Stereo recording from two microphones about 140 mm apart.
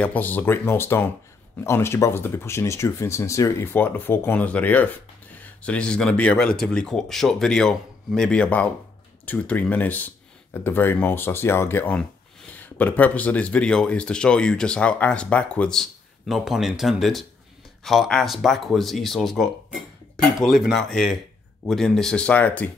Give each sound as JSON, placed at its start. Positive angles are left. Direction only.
{"t": 0.0, "sound": "speech", "side_deg": 10}